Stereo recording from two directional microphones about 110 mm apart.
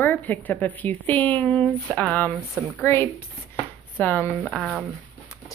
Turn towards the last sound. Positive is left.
turn(degrees=5)  # may be behind; listen again after turning